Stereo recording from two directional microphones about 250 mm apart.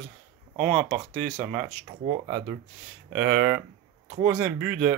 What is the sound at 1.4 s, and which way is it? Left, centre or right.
Speech, centre.